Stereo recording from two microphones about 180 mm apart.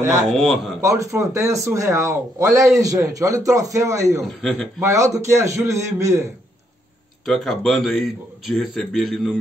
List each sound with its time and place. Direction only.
0.3 s speech: centre (ahead or behind)
0.7 s speech: 15° right (ahead or behind)
4.2 s speech: 5° left (ahead or behind)
4.7 s speech: 15° right (ahead or behind)
7.2 s speech: centre (ahead or behind)